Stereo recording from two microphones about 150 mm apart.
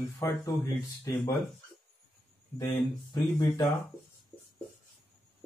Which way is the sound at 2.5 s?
30° left (ahead or behind).